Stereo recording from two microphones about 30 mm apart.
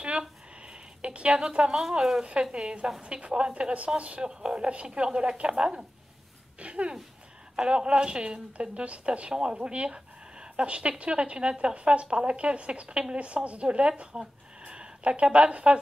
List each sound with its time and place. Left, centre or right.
0.6 s speech: right
1.8 s speech: centre
2.5 s a woman's voice: right
6.6 s a woman's voice: right
9.3 s a woman's voice: right
14.7 s a sound: right
15.5 s speech: right